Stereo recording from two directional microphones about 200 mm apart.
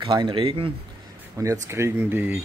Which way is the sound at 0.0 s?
25° right (ahead or behind).